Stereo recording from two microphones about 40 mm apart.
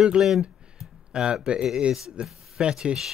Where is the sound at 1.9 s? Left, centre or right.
Centre.